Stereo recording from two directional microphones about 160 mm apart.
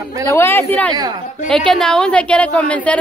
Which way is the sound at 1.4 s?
5° left (ahead or behind).